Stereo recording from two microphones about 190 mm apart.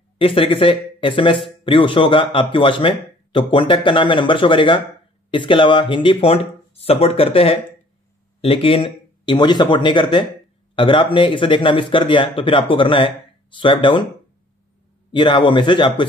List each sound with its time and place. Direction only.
0.2 s speech: 30° left (ahead or behind)
15.0 s speech: 25° left (ahead or behind)